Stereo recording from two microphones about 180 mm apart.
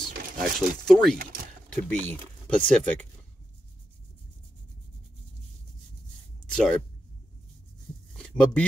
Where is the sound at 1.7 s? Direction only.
10° left (ahead or behind).